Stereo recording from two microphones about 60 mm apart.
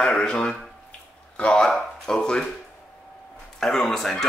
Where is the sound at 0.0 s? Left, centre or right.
Centre.